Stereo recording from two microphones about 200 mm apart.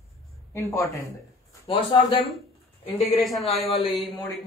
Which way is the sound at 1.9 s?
25° left (ahead or behind).